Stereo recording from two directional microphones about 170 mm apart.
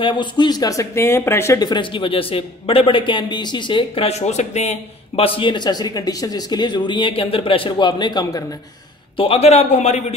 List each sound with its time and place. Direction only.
0.0 s speech: 30° left (ahead or behind)
9.1 s a man's voice: 35° left (ahead or behind)